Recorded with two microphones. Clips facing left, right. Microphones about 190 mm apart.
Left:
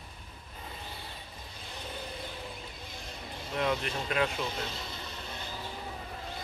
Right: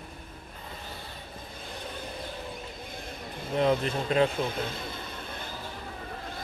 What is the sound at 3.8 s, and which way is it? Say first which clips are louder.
Speech: right 6 dB; 30° right (ahead or behind).